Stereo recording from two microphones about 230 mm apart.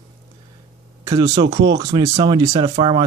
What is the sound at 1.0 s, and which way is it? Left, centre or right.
Speech, centre.